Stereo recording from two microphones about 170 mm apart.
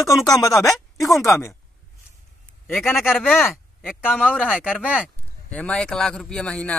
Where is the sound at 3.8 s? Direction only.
Centre (ahead or behind).